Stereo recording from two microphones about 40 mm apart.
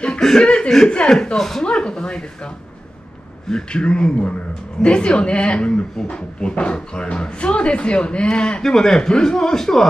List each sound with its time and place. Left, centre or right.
0.2 s speech: centre
0.8 s speech: left
1.1 s a man's voice: centre
1.6 s a sound: left
3.4 s speech: left
8.6 s a man's voice: centre